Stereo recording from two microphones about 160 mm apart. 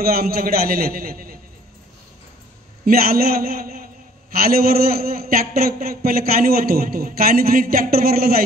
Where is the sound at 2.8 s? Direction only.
70° right (ahead or behind).